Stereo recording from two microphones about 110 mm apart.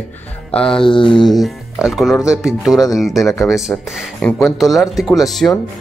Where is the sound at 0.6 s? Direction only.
5° left (ahead or behind).